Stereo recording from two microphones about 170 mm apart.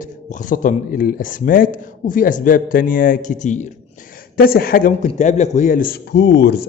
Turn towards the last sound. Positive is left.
turn(degrees=75)  # may be behind; listen again after turning